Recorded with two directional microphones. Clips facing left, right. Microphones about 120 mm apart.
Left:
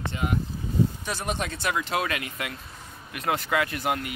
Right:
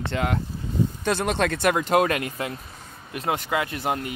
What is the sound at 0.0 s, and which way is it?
Speech, 75° right (ahead or behind).